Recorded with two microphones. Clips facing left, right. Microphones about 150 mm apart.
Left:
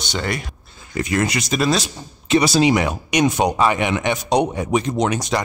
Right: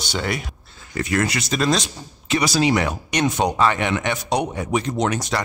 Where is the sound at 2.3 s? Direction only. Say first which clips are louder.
Left 4 dB; 25° left (ahead or behind).